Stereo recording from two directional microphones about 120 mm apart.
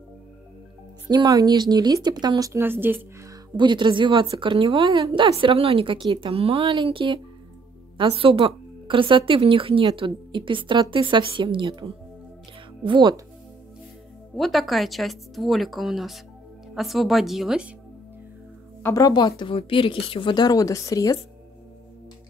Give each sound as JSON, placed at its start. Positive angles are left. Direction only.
{"t": 1.0, "sound": "speech", "side_deg": -35}
{"t": 2.6, "sound": "speech", "side_deg": -15}
{"t": 3.5, "sound": "speech", "side_deg": -40}
{"t": 14.3, "sound": "speech", "side_deg": 0}
{"t": 18.9, "sound": "a woman's voice", "side_deg": 30}